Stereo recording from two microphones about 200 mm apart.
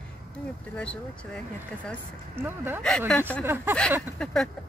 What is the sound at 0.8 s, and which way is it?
Speech, 5° left (ahead or behind).